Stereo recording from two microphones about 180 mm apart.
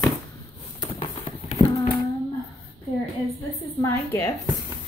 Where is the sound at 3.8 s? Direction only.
15° left (ahead or behind).